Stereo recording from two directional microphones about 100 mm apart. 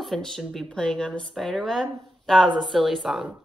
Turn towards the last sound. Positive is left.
turn(degrees=-5)  # may be behind; listen again after turning